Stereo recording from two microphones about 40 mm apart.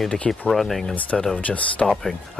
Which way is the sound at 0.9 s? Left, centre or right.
Left.